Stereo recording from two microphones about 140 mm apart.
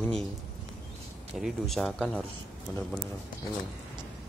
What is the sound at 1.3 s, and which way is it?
Speech, centre (ahead or behind).